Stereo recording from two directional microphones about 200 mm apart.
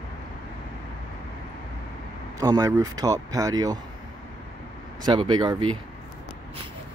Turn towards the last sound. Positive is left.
turn(degrees=-25)  # may be behind; listen again after turning